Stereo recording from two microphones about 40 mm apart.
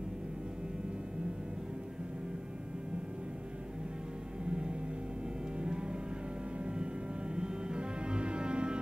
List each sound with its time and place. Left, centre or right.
4.5 s music: right